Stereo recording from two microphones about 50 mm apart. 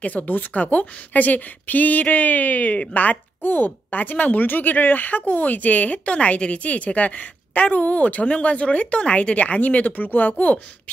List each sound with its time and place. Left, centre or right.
0.0 s speech: left
3.4 s speech: left